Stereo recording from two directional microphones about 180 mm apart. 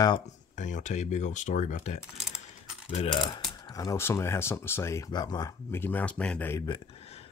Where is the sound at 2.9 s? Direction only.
25° left (ahead or behind).